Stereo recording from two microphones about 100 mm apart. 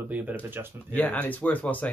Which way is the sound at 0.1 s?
15° right (ahead or behind).